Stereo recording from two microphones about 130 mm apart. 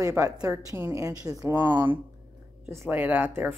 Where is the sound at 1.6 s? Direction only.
15° right (ahead or behind).